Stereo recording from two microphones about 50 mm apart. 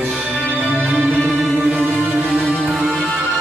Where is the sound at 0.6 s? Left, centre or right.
Right.